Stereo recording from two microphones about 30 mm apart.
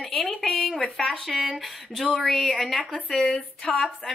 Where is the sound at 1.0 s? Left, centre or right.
Left.